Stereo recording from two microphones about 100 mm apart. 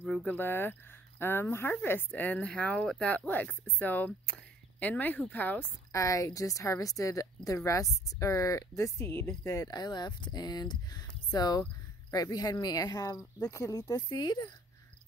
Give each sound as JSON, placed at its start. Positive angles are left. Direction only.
{"t": 0.0, "sound": "speech", "side_deg": 15}
{"t": 5.9, "sound": "a woman's voice", "side_deg": 35}